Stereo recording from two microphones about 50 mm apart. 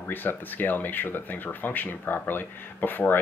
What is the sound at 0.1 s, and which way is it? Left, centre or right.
Speech, left.